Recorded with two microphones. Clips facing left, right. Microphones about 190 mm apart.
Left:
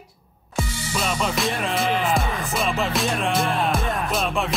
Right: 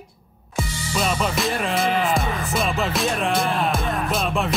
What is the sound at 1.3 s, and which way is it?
Music, centre (ahead or behind).